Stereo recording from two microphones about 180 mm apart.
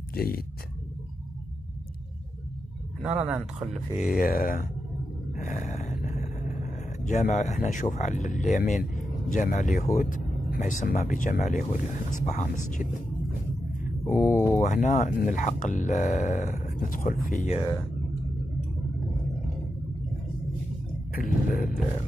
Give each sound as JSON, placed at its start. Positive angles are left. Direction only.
{"t": 0.1, "sound": "speech", "side_deg": 55}
{"t": 3.0, "sound": "speech", "side_deg": -5}
{"t": 4.1, "sound": "speech", "side_deg": 50}
{"t": 5.3, "sound": "vehicle", "side_deg": 45}
{"t": 7.6, "sound": "speech", "side_deg": 45}
{"t": 14.3, "sound": "speech", "side_deg": 15}
{"t": 14.6, "sound": "speech", "side_deg": 45}
{"t": 21.1, "sound": "speech", "side_deg": 50}